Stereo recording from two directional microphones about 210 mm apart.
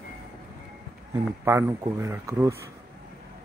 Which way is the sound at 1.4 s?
15° right (ahead or behind).